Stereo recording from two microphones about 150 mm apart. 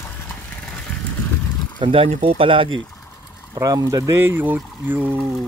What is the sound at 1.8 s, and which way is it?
Speech, 40° right (ahead or behind).